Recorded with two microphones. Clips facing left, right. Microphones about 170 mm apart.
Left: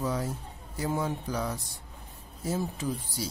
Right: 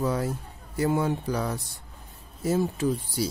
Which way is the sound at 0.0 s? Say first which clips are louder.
Right 4 dB; 65° right (ahead or behind).